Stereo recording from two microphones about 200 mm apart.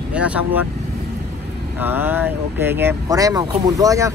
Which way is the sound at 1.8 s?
10° right (ahead or behind).